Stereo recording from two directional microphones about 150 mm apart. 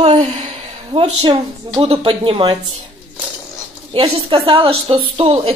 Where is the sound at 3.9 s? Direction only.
35° right (ahead or behind).